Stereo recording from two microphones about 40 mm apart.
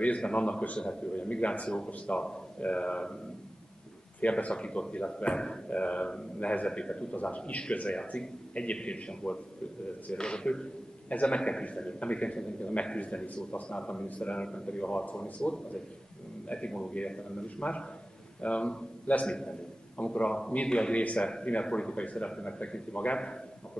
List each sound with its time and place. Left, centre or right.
0.0 s a man's voice: left
4.2 s a man's voice: left
16.5 s a man's voice: left